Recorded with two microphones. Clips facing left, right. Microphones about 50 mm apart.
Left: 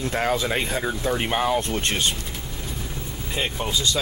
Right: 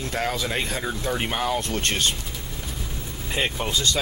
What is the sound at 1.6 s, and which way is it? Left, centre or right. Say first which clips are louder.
Speech: left 1 dB; centre.